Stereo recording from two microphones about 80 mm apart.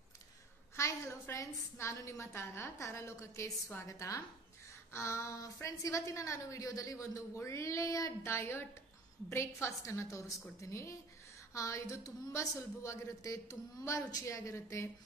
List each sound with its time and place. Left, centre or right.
0.7 s a woman's voice: left